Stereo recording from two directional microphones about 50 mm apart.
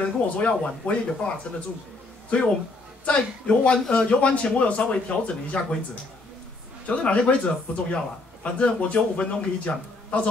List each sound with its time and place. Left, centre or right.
0.0 s a man's voice: left
3.1 s a man's voice: left
6.9 s a man's voice: left